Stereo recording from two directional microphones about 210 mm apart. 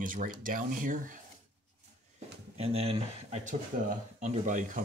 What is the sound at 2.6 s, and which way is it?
Speech, 30° right (ahead or behind).